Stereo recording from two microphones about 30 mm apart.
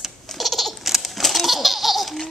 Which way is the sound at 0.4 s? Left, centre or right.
Centre.